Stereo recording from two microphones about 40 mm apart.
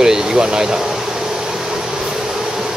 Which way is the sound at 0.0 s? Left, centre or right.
Centre.